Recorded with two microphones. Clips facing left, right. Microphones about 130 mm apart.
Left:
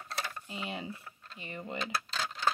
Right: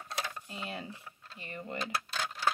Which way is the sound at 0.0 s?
5° right (ahead or behind).